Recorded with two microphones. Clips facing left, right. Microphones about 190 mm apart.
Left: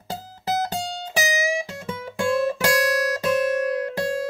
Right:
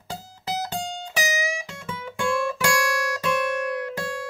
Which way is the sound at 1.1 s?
35° left (ahead or behind).